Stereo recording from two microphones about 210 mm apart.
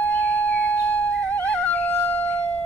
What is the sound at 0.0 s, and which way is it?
Music, 10° left (ahead or behind).